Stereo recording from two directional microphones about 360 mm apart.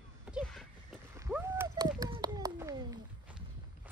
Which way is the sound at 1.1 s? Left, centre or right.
Centre.